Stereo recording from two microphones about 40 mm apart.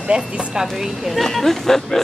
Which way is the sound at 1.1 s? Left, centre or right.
Centre.